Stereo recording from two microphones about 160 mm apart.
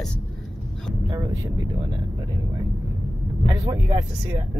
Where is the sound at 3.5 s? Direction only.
25° right (ahead or behind).